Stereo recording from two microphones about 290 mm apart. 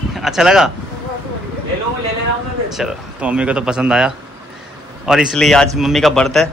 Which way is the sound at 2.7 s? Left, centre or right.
Centre.